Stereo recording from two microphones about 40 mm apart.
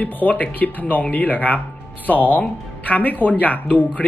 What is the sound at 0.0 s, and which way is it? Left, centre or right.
Speech, left.